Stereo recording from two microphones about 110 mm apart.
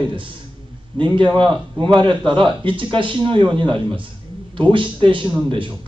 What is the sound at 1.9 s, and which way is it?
A man's voice, 50° right (ahead or behind).